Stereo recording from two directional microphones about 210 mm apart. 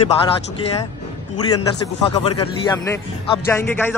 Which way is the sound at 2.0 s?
25° left (ahead or behind).